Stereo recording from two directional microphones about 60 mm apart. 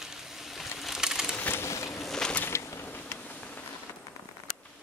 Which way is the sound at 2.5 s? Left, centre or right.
Left.